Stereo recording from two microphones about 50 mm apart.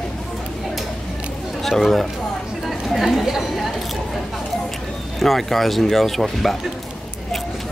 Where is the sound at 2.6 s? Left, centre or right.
Centre.